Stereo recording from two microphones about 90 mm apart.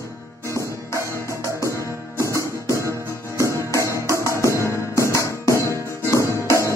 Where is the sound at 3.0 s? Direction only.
30° left (ahead or behind).